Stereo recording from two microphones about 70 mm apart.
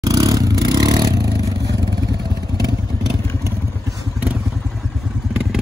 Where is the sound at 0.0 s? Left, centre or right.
Right.